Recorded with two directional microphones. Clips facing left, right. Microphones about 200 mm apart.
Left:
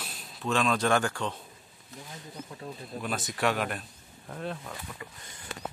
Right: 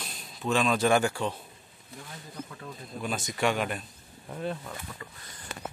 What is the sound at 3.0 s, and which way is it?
Speech, centre (ahead or behind).